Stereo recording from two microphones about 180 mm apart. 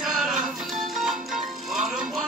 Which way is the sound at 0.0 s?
Centre (ahead or behind).